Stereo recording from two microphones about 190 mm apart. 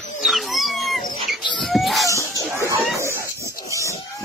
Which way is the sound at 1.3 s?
Centre (ahead or behind).